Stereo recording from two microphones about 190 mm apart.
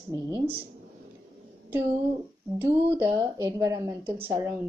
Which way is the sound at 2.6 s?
10° right (ahead or behind).